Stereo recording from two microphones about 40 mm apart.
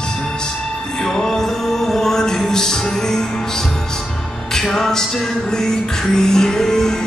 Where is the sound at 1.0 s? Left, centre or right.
Centre.